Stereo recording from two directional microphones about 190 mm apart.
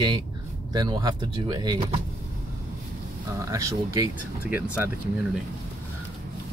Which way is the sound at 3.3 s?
15° right (ahead or behind).